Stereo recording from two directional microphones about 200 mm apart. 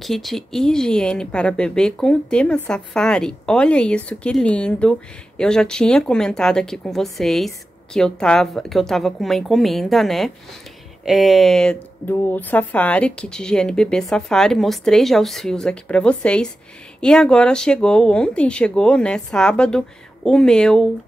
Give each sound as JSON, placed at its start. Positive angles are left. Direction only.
{"t": 0.0, "sound": "speech", "side_deg": 0}